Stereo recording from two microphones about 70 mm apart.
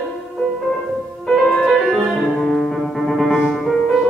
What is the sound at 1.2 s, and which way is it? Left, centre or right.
Music, centre.